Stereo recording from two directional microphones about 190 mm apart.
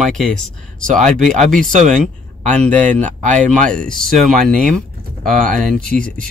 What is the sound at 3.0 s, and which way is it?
Speech, 40° right (ahead or behind).